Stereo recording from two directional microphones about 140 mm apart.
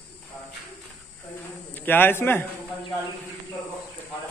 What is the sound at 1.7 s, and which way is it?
Speech, 15° left (ahead or behind).